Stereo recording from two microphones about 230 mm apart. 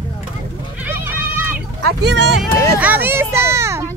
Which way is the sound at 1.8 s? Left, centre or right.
Right.